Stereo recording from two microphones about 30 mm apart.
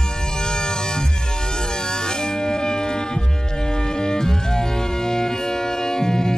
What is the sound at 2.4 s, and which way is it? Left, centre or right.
Music, left.